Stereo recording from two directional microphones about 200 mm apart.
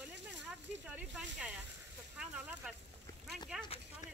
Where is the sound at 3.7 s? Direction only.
30° left (ahead or behind).